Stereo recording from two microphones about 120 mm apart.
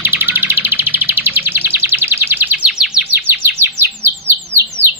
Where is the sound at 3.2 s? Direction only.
20° right (ahead or behind).